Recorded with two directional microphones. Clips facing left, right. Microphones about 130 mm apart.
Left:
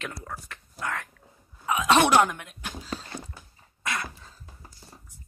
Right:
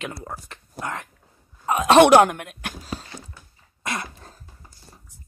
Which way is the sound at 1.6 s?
45° right (ahead or behind).